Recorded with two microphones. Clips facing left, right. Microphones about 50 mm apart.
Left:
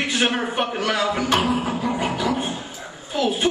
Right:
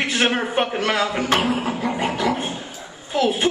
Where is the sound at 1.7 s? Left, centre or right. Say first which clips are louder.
Even; right.